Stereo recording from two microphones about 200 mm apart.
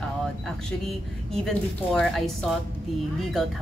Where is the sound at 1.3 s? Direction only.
Centre (ahead or behind).